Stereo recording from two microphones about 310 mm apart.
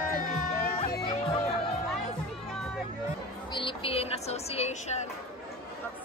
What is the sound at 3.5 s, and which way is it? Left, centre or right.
Music, centre.